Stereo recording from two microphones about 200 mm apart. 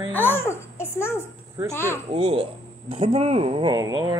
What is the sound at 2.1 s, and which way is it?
Speech, 30° right (ahead or behind).